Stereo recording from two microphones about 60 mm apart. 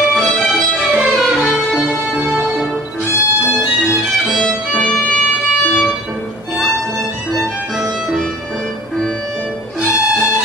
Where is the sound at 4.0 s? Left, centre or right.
Centre.